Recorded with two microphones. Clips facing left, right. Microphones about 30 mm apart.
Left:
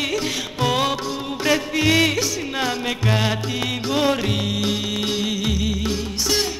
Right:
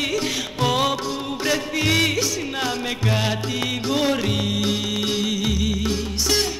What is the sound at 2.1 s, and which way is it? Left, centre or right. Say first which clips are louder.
Music: left 1 dB; centre.